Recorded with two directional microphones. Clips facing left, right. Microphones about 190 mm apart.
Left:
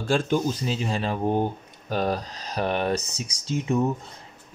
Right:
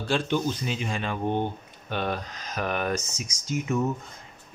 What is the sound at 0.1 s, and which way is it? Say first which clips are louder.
Speech: left 3 dB; 40° left (ahead or behind).